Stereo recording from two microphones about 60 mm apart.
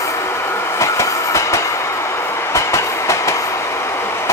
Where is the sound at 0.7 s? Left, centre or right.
Left.